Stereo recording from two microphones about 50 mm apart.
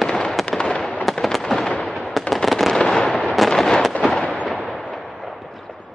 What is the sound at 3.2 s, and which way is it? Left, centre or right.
Artillery fire, centre.